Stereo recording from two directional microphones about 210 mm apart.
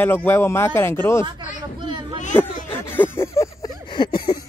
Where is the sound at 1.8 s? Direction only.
20° right (ahead or behind).